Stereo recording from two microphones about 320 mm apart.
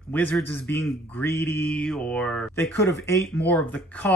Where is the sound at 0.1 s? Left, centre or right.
Centre.